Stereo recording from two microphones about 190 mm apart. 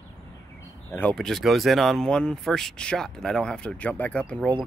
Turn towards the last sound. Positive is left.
turn(degrees=5)  # may be behind; listen again after turning